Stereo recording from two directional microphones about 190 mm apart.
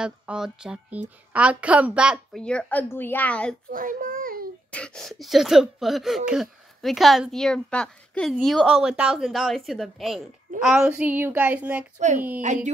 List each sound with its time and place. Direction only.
0.0 s speech: 5° right (ahead or behind)
3.7 s baby cry: 45° right (ahead or behind)
4.6 s speech: 5° left (ahead or behind)